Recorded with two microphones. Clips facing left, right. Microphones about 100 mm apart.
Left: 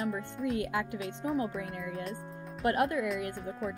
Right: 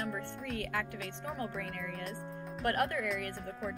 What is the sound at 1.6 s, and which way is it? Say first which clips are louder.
Speech: left 3 dB; 15° left (ahead or behind).